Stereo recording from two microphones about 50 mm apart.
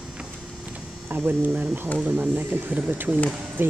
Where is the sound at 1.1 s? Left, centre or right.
Right.